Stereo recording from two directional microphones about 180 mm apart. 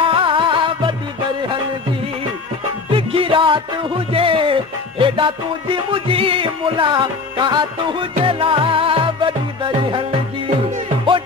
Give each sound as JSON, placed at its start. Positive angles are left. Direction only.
{"t": 0.0, "sound": "music", "side_deg": -30}
{"t": 2.9, "sound": "music", "side_deg": -30}